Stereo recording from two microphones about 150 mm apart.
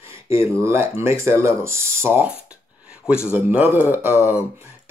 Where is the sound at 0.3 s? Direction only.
15° right (ahead or behind).